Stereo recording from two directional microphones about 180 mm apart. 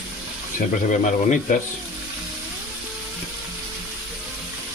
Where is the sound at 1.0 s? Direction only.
45° left (ahead or behind).